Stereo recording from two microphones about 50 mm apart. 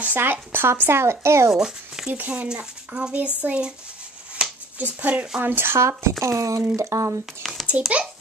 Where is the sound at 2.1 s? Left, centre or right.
Right.